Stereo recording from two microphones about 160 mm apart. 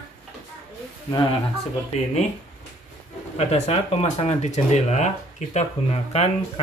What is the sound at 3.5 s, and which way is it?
Speech, 40° left (ahead or behind).